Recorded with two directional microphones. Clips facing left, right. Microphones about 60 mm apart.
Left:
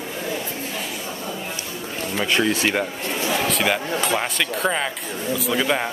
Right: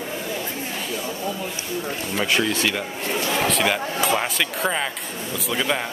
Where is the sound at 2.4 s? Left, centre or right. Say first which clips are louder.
Left 2 dB; left.